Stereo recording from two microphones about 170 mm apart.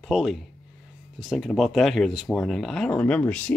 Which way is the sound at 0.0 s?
Centre (ahead or behind).